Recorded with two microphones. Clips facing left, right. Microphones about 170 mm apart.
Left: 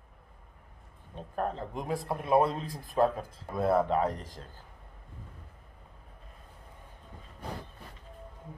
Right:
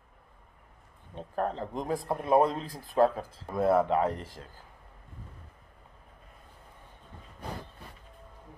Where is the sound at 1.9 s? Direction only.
25° right (ahead or behind).